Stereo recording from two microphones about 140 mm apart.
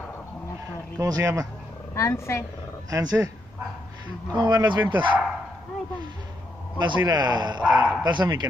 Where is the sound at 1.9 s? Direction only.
20° left (ahead or behind).